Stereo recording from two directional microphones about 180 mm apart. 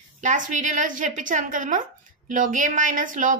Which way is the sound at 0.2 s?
45° right (ahead or behind).